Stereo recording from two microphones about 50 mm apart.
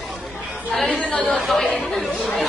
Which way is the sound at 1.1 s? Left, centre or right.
Left.